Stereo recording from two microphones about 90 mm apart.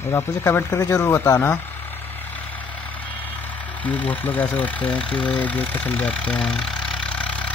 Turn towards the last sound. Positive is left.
turn(degrees=15)  # may be behind; listen again after turning